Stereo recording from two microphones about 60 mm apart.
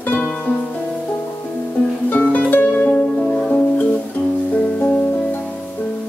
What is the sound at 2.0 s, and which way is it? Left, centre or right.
Music, left.